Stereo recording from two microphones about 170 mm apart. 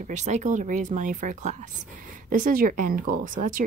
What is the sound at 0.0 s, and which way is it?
Speech, 45° right (ahead or behind).